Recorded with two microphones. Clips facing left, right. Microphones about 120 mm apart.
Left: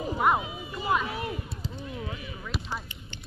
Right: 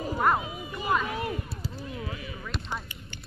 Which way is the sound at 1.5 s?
5° right (ahead or behind).